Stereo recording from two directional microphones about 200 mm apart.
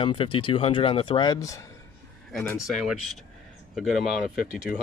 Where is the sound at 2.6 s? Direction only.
Centre (ahead or behind).